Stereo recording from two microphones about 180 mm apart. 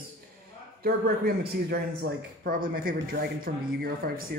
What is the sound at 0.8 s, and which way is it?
A man's voice, 55° right (ahead or behind).